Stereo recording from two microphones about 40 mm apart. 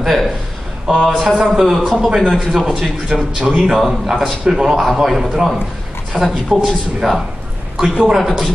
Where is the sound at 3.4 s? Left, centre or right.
Centre.